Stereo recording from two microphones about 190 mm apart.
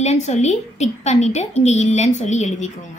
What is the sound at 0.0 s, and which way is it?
A woman's voice, 35° left (ahead or behind).